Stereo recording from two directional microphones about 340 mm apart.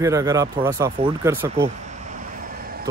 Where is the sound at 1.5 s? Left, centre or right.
Centre.